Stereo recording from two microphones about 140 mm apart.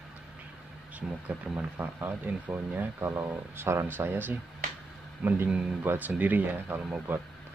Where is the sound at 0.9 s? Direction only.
10° right (ahead or behind).